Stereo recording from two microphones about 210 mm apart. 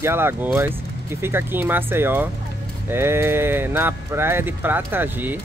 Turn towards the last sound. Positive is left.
turn(degrees=-10)  # may be behind; listen again after turning